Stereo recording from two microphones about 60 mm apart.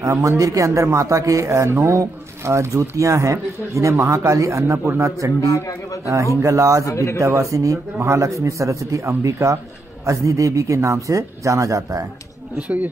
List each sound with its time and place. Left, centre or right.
0.0 s speech: right
5.4 s a man's voice: left
6.4 s speech: right
6.9 s a man's voice: left
7.2 s speech: right
12.5 s speech: right